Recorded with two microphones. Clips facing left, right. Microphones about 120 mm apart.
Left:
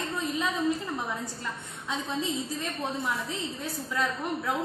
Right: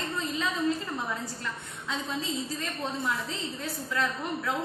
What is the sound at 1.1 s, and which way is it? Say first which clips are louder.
A woman's voice: even; 20° left (ahead or behind).